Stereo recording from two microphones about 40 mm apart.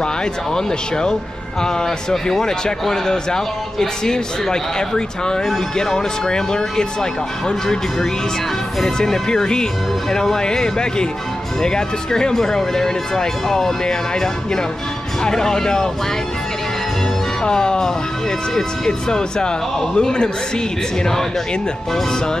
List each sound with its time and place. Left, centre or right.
0.0 s speech: centre
17.4 s speech: centre